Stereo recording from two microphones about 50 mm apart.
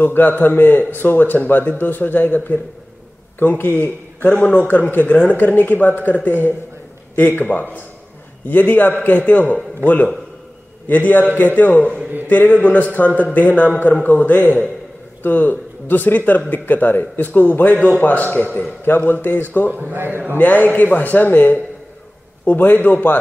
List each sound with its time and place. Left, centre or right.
0.0 s a man's voice: left
10.9 s a man's voice: left
19.7 s a man's voice: right
20.3 s a man's voice: left